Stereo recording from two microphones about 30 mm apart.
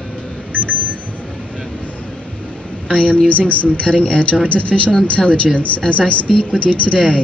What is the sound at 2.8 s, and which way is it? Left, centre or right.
Speech, left.